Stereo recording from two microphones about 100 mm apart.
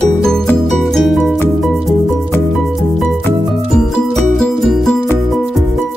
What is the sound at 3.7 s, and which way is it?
Music, 5° left (ahead or behind).